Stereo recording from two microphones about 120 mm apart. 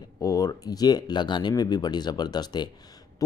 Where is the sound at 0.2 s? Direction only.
30° left (ahead or behind).